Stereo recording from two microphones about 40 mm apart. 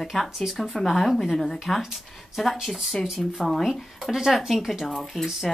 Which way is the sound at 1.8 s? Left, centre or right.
Centre.